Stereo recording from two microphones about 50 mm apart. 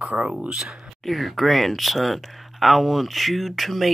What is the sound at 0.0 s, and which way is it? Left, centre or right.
Speech, right.